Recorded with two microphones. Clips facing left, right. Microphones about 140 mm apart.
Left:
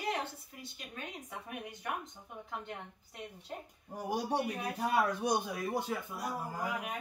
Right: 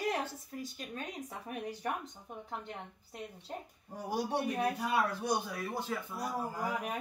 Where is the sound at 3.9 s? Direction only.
15° left (ahead or behind).